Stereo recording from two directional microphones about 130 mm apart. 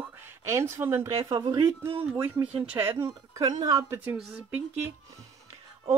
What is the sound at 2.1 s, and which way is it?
Speech, 20° right (ahead or behind).